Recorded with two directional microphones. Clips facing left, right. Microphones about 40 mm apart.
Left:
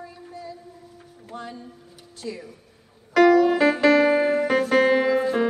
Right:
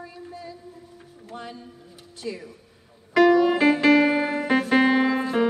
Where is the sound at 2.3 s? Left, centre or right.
Right.